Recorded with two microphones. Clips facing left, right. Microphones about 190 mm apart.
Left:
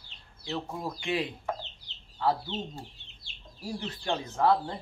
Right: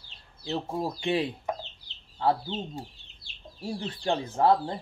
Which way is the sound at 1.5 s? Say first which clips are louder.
Right 2 dB; 15° right (ahead or behind).